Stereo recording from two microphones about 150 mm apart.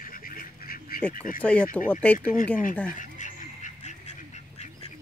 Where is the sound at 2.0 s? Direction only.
10° left (ahead or behind).